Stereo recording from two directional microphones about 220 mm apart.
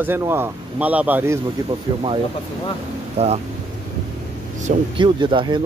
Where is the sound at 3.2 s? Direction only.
25° right (ahead or behind).